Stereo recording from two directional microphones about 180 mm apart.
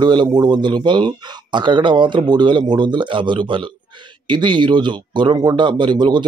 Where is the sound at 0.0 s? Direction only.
25° right (ahead or behind).